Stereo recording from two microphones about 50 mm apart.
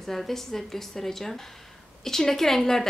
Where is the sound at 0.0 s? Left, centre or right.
Centre.